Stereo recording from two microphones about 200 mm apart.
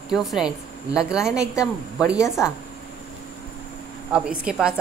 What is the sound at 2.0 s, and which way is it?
Speech, 5° right (ahead or behind).